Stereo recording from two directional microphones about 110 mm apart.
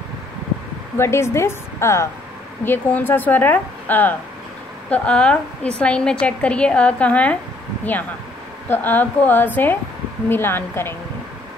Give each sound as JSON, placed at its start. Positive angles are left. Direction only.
{"t": 0.9, "sound": "a woman's voice", "side_deg": 25}
{"t": 8.6, "sound": "a woman's voice", "side_deg": 20}